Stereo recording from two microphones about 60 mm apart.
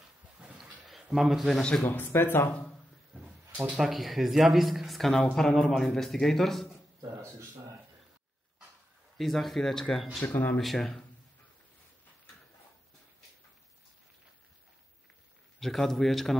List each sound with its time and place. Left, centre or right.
0.4 s a sound: centre
1.0 s speech: centre
1.5 s speech: centre
1.9 s speech: left
3.8 s speech: centre
7.0 s a sound: right
9.2 s speech: centre
10.2 s speech: left
10.6 s speech: centre
15.6 s speech: centre